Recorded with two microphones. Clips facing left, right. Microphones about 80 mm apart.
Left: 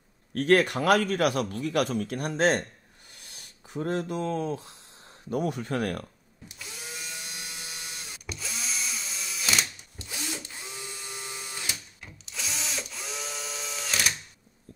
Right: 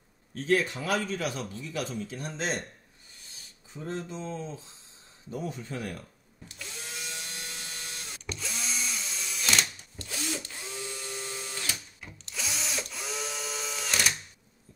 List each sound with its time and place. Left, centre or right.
0.3 s a man's voice: left
6.5 s drill: centre
9.9 s a sound: centre
12.0 s drill: centre